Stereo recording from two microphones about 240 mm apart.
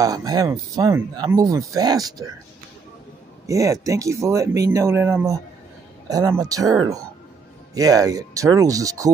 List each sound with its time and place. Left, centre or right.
0.0 s speech: centre
3.4 s speech: centre